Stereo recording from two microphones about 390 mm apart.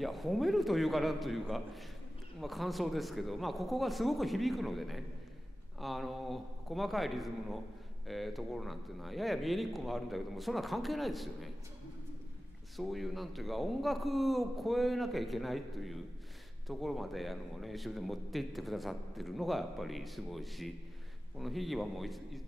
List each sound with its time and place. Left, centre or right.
0.0 s a man's voice: centre
12.7 s a man's voice: centre